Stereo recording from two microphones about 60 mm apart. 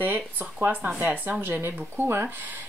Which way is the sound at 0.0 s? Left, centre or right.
Right.